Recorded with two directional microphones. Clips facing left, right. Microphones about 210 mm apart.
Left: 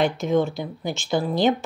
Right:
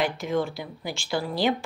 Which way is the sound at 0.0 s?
25° left (ahead or behind).